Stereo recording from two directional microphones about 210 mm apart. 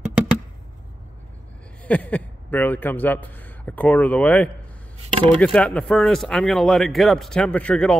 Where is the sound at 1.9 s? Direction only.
5° left (ahead or behind).